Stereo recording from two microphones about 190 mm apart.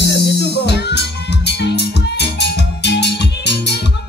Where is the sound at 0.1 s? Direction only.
65° left (ahead or behind).